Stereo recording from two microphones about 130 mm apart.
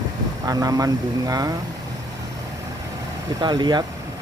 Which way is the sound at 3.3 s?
35° right (ahead or behind).